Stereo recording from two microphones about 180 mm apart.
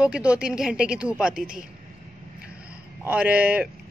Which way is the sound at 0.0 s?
5° right (ahead or behind).